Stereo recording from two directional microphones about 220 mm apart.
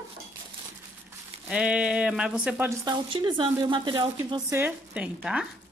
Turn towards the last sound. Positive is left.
turn(degrees=-5)  # may be behind; listen again after turning